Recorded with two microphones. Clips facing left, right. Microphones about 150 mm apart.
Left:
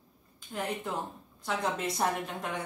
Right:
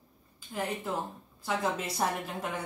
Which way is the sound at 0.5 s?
Centre (ahead or behind).